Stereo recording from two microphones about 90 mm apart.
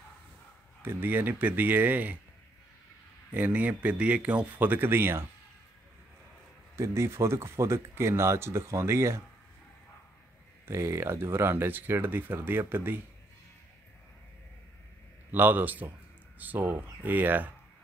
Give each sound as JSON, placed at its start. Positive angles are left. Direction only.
{"t": 0.8, "sound": "speech", "side_deg": -20}
{"t": 3.3, "sound": "speech", "side_deg": -20}
{"t": 6.8, "sound": "speech", "side_deg": -30}
{"t": 10.6, "sound": "speech", "side_deg": -30}
{"t": 15.3, "sound": "speech", "side_deg": -20}